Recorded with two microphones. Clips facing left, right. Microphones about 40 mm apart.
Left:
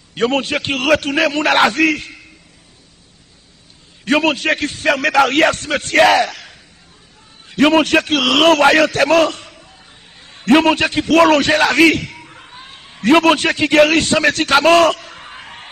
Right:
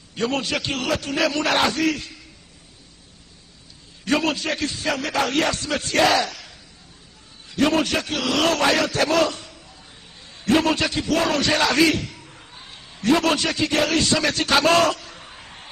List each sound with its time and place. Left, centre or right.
0.1 s a man's voice: left
4.0 s a man's voice: left
11.4 s a man's voice: left
12.5 s a man's voice: left